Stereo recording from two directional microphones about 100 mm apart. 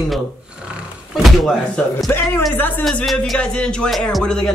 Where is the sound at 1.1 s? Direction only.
Centre (ahead or behind).